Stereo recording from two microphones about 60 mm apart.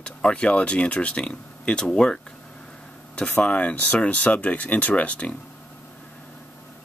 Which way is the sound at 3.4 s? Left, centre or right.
Centre.